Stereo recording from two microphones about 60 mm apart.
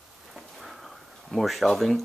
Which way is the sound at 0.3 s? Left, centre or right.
Centre.